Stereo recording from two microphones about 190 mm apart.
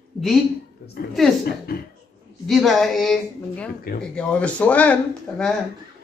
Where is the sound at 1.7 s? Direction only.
50° left (ahead or behind).